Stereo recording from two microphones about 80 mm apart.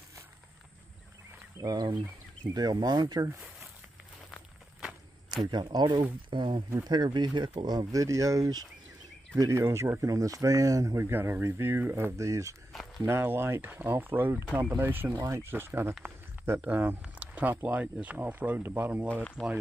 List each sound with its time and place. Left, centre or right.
1.6 s speech: right
4.7 s walk: centre
5.5 s speech: right
6.8 s speech: right
9.3 s speech: right
12.2 s speech: right
13.0 s speech: right
16.0 s a sound: right
17.0 s speech: centre
19.4 s speech: centre